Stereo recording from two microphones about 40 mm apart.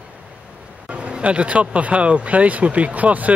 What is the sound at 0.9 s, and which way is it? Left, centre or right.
Speech, right.